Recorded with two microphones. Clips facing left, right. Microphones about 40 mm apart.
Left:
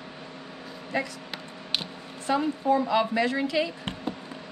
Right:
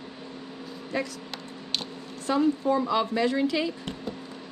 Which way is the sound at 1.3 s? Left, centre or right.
Centre.